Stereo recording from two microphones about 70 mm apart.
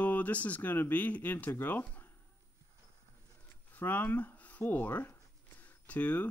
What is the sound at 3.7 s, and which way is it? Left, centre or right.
Speech, left.